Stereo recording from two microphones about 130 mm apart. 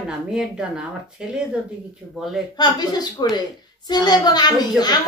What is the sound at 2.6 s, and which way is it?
A woman's voice, 30° left (ahead or behind).